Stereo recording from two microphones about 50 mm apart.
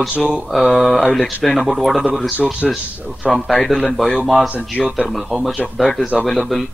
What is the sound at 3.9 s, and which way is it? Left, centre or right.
Mantra, centre.